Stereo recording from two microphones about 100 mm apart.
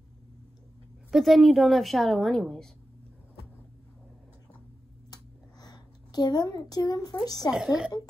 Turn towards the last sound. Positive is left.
turn(degrees=-5)  # may be behind; listen again after turning